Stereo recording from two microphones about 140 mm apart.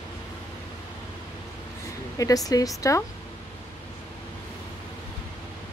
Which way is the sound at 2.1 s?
25° left (ahead or behind).